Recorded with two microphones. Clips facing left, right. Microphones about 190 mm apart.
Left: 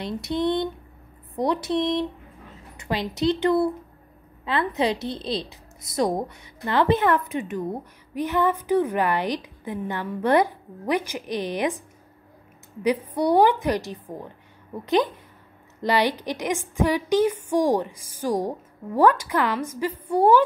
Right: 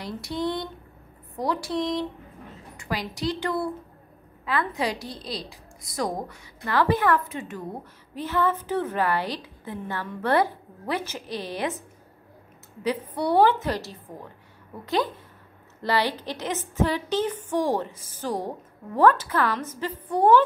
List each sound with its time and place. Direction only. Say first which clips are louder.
0.0 s a woman's voice: left 4 dB; 20° left (ahead or behind)
12.8 s a woman's voice: left 4 dB; 15° left (ahead or behind)
15.8 s a woman's voice: left 3 dB; 15° left (ahead or behind)